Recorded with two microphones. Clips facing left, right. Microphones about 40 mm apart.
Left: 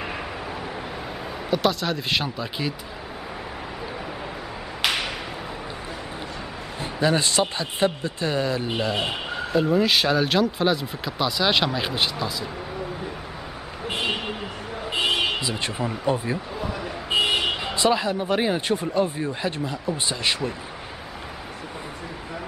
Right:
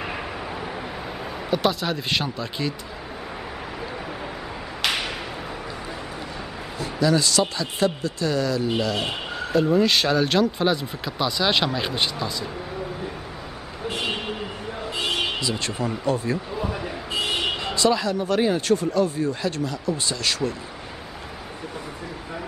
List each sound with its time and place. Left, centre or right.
1.5 s speech: centre
4.8 s a sound: centre
6.8 s speech: left
9.0 s speech: centre
14.0 s vehicle: centre
14.9 s a sound: left
15.1 s speech: centre
16.6 s basketball bounce: centre
17.3 s vehicle: centre
17.7 s speech: left